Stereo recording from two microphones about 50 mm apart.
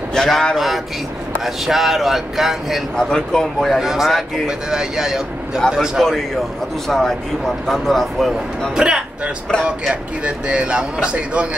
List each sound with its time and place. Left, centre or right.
0.1 s speech: centre
1.4 s speech: centre
3.0 s speech: centre
3.8 s speech: centre
6.9 s speech: centre
8.7 s speech: centre
10.2 s speech: right